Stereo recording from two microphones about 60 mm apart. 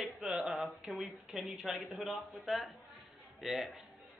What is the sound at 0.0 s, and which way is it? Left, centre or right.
Speech, centre.